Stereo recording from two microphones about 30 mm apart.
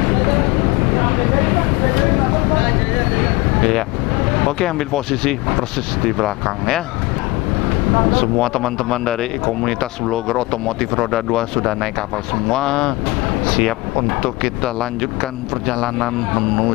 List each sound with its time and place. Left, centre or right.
0.0 s a sound: centre
4.3 s speech: centre
7.6 s vehicle: centre
8.1 s speech: centre